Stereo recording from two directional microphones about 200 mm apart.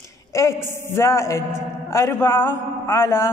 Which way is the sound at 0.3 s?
15° left (ahead or behind).